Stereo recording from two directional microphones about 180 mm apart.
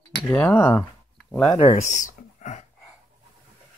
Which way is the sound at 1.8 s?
45° left (ahead or behind).